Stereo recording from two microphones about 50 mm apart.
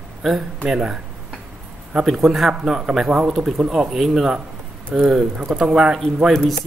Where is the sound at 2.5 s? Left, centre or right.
Centre.